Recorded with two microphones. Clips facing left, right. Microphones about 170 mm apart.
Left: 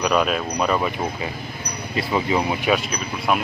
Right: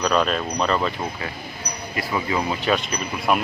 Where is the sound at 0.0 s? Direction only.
5° left (ahead or behind).